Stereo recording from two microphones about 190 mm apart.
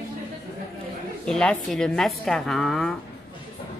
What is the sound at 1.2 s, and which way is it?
A woman's voice, 5° left (ahead or behind).